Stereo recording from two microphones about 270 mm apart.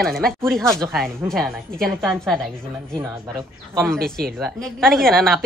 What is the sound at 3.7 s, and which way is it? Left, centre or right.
Speech, centre.